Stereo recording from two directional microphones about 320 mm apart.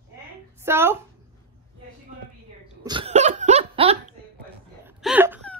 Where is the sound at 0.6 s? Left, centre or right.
Centre.